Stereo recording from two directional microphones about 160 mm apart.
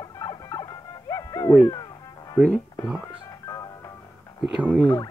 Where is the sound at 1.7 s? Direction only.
25° left (ahead or behind).